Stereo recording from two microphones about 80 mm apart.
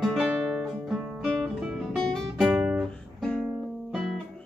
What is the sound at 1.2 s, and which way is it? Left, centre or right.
Music, centre.